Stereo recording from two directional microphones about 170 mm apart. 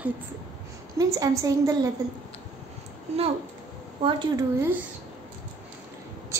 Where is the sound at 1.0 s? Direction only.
20° right (ahead or behind).